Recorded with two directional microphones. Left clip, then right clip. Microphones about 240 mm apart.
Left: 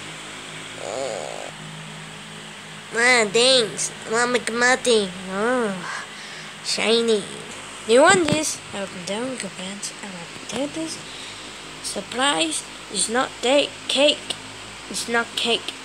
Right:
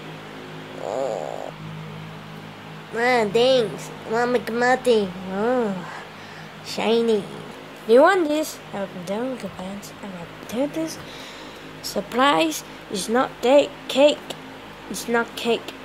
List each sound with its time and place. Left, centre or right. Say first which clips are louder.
0.8 s a sound: right 3 dB; centre
3.0 s speech: left 2 dB; centre
11.8 s a woman's voice: right 3 dB; centre